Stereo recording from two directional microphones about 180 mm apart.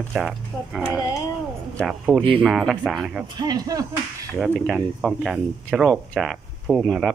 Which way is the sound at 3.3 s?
20° right (ahead or behind).